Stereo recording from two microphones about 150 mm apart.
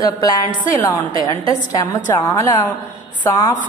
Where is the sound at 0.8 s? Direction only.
15° left (ahead or behind).